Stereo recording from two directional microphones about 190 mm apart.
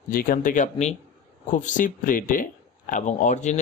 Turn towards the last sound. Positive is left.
turn(degrees=40)  # may be behind; listen again after turning